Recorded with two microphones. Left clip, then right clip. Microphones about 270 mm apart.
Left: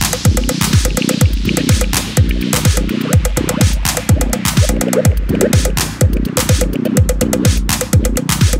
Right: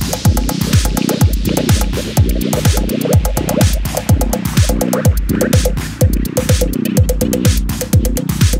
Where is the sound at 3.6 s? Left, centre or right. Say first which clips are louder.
Even; centre.